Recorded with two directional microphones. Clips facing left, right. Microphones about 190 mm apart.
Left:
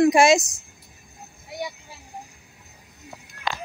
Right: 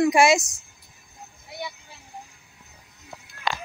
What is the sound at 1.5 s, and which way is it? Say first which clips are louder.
Vehicle: left 4 dB; 40° left (ahead or behind).